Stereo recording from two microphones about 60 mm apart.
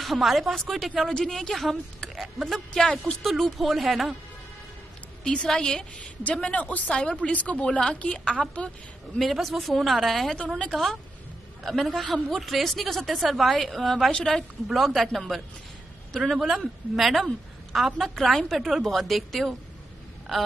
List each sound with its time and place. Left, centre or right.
0.0 s a woman's voice: centre
5.2 s a woman's voice: centre
9.2 s a woman's voice: centre
14.7 s a woman's voice: centre